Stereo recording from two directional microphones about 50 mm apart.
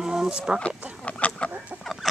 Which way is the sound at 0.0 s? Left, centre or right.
Centre.